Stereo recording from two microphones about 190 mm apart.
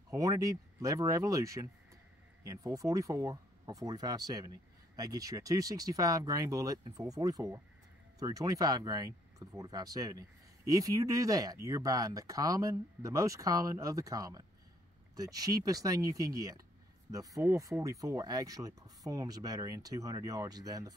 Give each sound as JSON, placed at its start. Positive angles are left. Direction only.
{"t": 0.1, "sound": "speech", "side_deg": -15}